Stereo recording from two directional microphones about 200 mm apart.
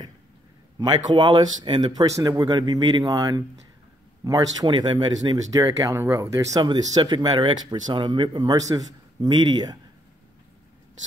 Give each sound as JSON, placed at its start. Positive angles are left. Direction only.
{"t": 0.7, "sound": "speech", "side_deg": -25}